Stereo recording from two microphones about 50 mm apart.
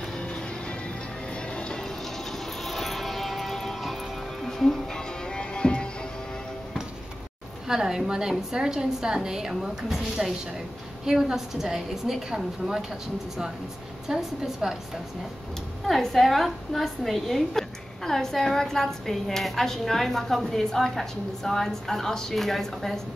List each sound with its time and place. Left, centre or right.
0.2 s music: left
2.3 s music: centre
4.9 s music: centre
7.6 s a woman's voice: centre
14.0 s a woman's voice: centre
15.9 s a woman's voice: centre